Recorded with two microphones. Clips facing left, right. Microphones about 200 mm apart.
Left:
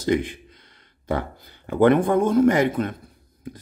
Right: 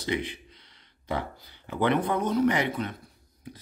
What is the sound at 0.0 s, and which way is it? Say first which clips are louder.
Speech: left 8 dB; 45° left (ahead or behind).